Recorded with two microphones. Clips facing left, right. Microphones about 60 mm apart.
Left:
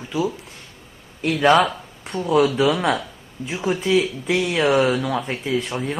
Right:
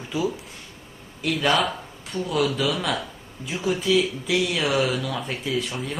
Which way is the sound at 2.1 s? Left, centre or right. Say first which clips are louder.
Left 2 dB; centre.